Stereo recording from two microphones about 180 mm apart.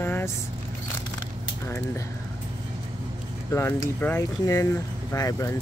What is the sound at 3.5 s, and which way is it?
Speech, 15° left (ahead or behind).